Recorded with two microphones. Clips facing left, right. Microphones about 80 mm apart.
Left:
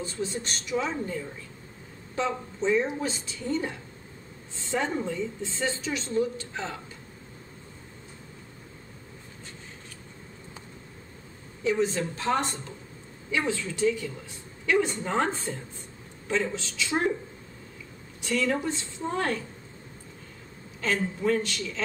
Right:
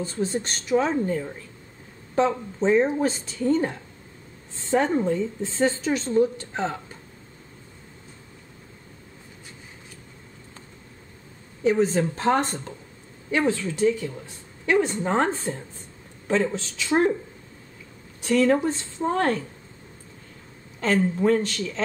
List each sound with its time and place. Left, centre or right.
0.0 s a woman's voice: right
11.6 s a woman's voice: right
18.2 s a woman's voice: right
20.8 s a woman's voice: right